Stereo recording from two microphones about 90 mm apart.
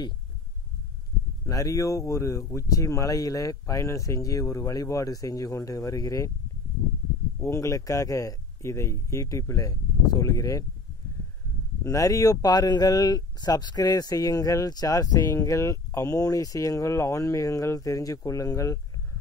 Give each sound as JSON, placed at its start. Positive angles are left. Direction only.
{"t": 1.4, "sound": "speech", "side_deg": 35}
{"t": 7.3, "sound": "speech", "side_deg": 30}
{"t": 11.8, "sound": "speech", "side_deg": 35}